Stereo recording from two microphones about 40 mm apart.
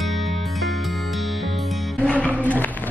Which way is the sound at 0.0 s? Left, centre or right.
Centre.